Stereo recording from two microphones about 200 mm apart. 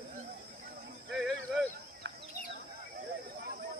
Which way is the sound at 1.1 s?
Centre (ahead or behind).